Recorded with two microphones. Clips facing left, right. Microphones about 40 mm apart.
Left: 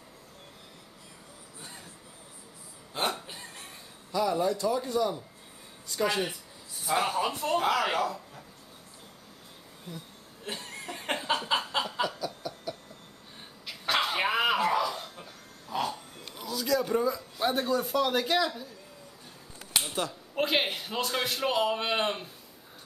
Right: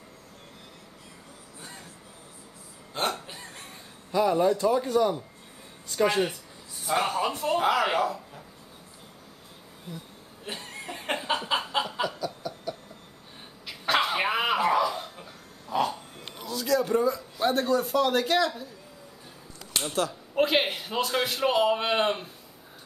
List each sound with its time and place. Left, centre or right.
2.9 s hiccup: centre
4.1 s a man's voice: centre
9.9 s a man's voice: centre
10.4 s chuckle: centre
13.7 s a sound: centre
16.3 s a man's voice: centre
19.7 s speech: centre